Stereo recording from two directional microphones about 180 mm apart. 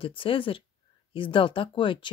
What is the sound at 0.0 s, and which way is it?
Speech, 30° left (ahead or behind).